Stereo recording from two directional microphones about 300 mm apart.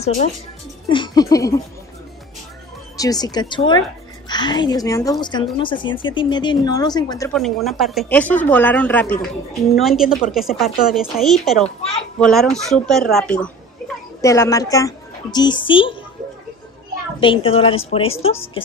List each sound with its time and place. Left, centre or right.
0.0 s a woman's voice: left
3.0 s a woman's voice: centre
17.2 s a woman's voice: centre